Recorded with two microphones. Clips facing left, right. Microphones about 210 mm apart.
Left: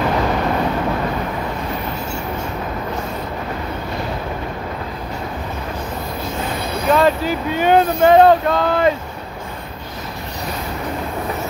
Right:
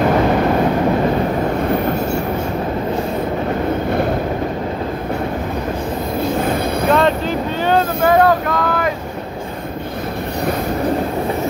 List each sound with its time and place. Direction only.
6.9 s vehicle: centre (ahead or behind); by 8.9 s 25° left (ahead or behind)